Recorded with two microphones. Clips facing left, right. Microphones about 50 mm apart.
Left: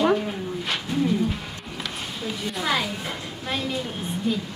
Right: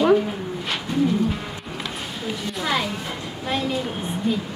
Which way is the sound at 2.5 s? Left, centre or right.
Centre.